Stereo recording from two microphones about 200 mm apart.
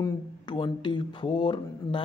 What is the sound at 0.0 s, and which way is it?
Speech, 20° left (ahead or behind).